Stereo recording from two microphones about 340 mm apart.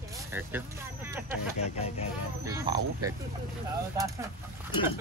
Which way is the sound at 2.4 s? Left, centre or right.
Centre.